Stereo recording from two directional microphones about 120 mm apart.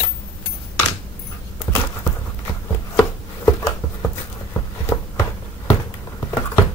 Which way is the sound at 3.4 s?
25° left (ahead or behind).